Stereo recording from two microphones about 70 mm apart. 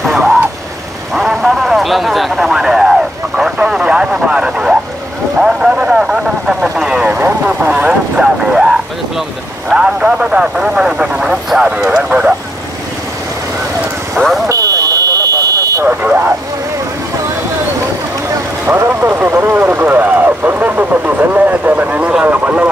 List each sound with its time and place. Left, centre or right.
0.0 s vehicle: centre
7.2 s vehicle: right
9.7 s speech: centre
14.1 s vehicle: centre
14.5 s fire alarm: right
15.9 s vehicle: right
18.7 s vehicle: right
19.5 s a sound: right
22.2 s speech: right